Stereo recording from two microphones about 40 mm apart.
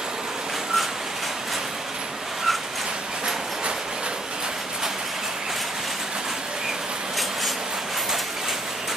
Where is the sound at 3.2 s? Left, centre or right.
Right.